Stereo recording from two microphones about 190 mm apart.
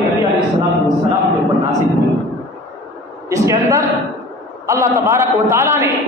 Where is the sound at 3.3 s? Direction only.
15° right (ahead or behind).